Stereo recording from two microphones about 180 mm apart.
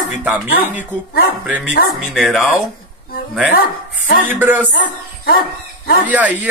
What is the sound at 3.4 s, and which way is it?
Speech, 90° left.